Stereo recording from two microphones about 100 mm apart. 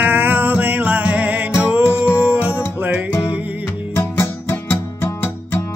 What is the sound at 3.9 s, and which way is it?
Music, 20° left (ahead or behind).